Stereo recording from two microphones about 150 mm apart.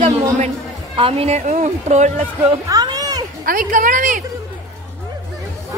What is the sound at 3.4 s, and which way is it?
Speech, 70° right (ahead or behind).